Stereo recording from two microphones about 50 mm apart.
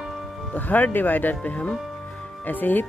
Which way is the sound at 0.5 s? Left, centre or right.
Left.